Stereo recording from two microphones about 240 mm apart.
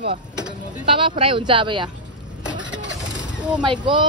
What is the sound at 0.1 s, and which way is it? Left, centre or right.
Speech, right.